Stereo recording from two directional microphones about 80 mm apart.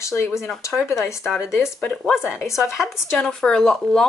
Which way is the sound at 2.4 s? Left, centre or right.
Left.